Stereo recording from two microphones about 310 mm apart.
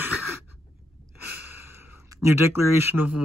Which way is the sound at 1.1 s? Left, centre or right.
Left.